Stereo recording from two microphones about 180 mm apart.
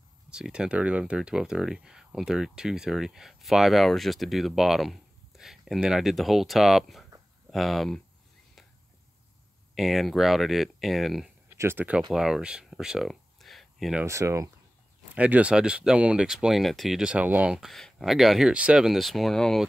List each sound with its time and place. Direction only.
0.3 s speech: 5° right (ahead or behind)
9.8 s speech: centre (ahead or behind)
11.4 s speech: 15° right (ahead or behind)
14.0 s speech: 15° right (ahead or behind); by 19.7 s centre (ahead or behind)